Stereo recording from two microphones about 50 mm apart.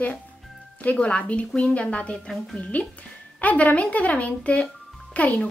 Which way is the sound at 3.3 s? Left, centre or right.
Left.